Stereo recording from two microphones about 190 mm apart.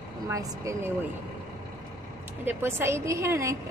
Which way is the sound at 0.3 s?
15° right (ahead or behind).